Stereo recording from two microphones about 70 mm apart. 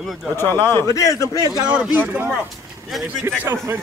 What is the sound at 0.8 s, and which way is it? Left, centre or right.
Speech, left.